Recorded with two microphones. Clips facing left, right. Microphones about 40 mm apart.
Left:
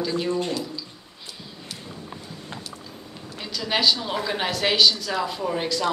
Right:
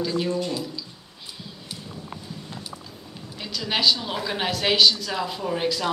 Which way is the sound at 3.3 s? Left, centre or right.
Centre.